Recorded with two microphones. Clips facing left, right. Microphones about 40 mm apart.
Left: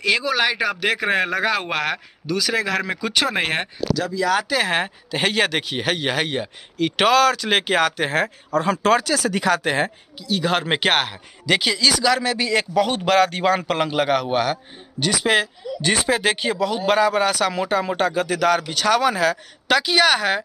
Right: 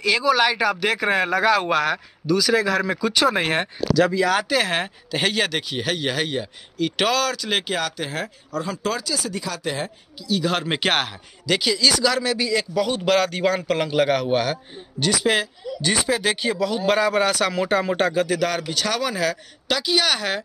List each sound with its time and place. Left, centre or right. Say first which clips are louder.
0.0 s speech: right 1 dB; left
3.3 s speech: right 2 dB; left
4.3 s speech: even; centre
4.6 s speech: left 2 dB; centre; by 9.5 s left
9.5 s a man's voice: left 9 dB; left
10.2 s speech: left 1 dB; left
10.8 s a man's voice: left 2 dB; centre
11.4 s speech: left 1 dB; left
12.5 s a man's voice: left 3 dB; left
13.1 s a man's voice: left 3 dB; left